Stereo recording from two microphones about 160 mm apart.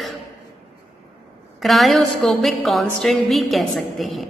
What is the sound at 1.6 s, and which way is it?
A woman's voice, centre (ahead or behind).